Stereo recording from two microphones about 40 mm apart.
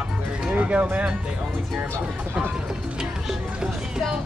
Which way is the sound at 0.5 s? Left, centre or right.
Right.